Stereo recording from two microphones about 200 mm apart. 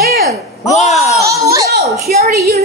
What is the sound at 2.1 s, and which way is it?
Speech, 50° right (ahead or behind).